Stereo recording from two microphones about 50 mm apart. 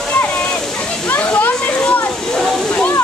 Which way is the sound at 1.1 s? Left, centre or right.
Left.